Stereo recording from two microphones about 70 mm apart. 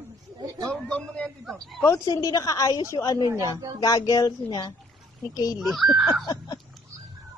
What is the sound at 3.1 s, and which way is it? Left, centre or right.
Speech, right.